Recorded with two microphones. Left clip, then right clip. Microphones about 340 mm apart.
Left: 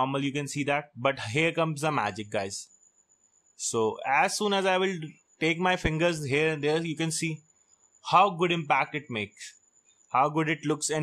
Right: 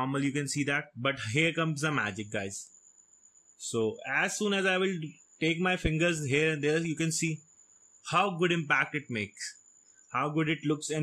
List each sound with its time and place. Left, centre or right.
0.0 s speech: centre